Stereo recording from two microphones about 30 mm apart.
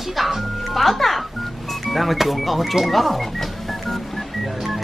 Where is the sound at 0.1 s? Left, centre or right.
Centre.